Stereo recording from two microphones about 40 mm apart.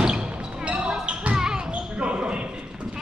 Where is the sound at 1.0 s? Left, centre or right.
Right.